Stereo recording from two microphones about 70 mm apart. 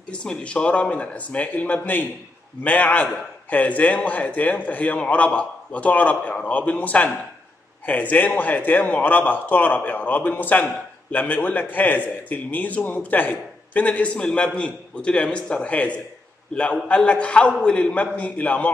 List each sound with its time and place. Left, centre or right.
0.1 s a man's voice: centre